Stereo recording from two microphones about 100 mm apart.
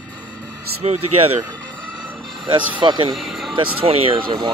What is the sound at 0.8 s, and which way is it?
Speech, 90° right.